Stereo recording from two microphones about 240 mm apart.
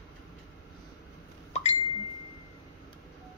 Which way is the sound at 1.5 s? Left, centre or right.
Left.